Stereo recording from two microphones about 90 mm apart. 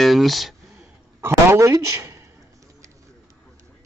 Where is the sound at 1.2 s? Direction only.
30° right (ahead or behind).